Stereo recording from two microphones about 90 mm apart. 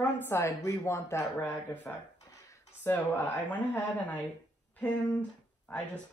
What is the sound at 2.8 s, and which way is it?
Speech, 25° left (ahead or behind).